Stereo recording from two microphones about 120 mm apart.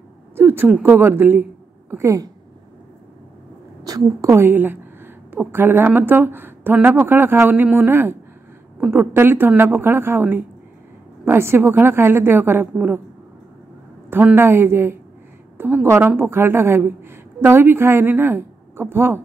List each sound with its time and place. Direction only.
0.4 s a woman's voice: 20° right (ahead or behind)
3.8 s a woman's voice: 30° right (ahead or behind)
14.1 s a woman's voice: 15° right (ahead or behind)